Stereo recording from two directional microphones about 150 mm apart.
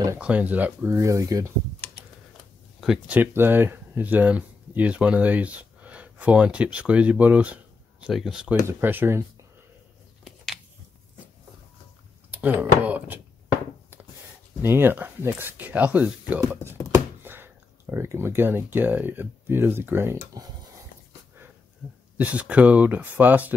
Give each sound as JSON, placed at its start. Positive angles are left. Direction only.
{"t": 0.2, "sound": "speech", "side_deg": -10}
{"t": 2.8, "sound": "speech", "side_deg": -5}
{"t": 10.2, "sound": "a sound", "side_deg": 0}
{"t": 12.3, "sound": "speech", "side_deg": -10}
{"t": 14.6, "sound": "speech", "side_deg": -15}
{"t": 22.1, "sound": "speech", "side_deg": -10}